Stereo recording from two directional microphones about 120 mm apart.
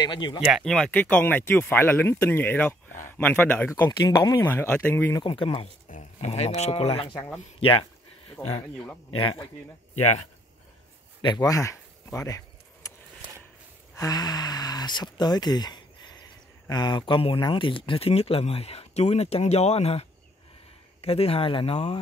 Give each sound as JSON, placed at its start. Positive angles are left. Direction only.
{"t": 0.0, "sound": "speech", "side_deg": 40}
{"t": 0.4, "sound": "speech", "side_deg": -5}
{"t": 4.5, "sound": "speech", "side_deg": 15}
{"t": 5.2, "sound": "speech", "side_deg": 45}
{"t": 5.9, "sound": "speech", "side_deg": 75}
{"t": 8.4, "sound": "speech", "side_deg": 60}
{"t": 9.1, "sound": "speech", "side_deg": 45}
{"t": 11.1, "sound": "speech", "side_deg": 35}
{"t": 12.8, "sound": "a sound", "side_deg": 25}
{"t": 13.9, "sound": "speech", "side_deg": 30}